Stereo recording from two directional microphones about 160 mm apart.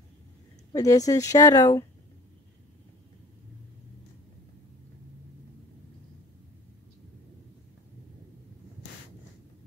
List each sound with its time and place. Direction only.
0.7 s a woman's voice: 20° left (ahead or behind)